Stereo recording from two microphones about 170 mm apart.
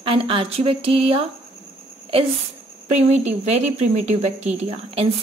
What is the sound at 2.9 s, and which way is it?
A woman's voice, 40° right (ahead or behind).